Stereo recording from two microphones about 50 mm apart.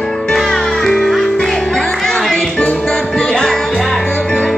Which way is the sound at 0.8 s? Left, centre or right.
Centre.